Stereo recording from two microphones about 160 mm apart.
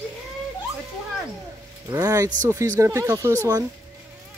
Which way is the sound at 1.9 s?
20° right (ahead or behind).